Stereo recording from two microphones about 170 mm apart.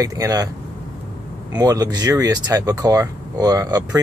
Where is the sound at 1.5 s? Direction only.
20° right (ahead or behind).